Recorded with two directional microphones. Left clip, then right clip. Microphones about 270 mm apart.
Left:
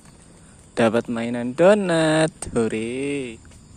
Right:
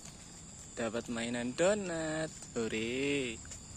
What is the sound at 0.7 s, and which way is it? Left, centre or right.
Speech, left.